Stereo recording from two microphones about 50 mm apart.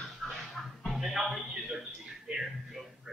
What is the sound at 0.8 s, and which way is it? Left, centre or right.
Music, centre.